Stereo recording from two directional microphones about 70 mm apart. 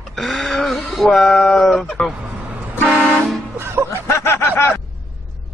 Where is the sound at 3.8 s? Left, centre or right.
Left.